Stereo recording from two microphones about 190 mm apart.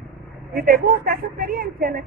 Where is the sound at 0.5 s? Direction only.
50° right (ahead or behind).